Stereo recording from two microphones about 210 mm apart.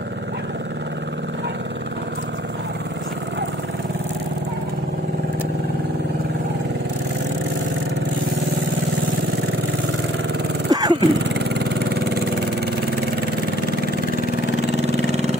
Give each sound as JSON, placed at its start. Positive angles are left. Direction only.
{"t": 10.7, "sound": "dog", "side_deg": -20}
{"t": 14.8, "sound": "vehicle", "side_deg": -30}